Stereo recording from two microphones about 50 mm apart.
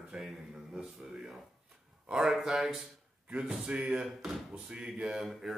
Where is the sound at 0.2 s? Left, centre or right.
Centre.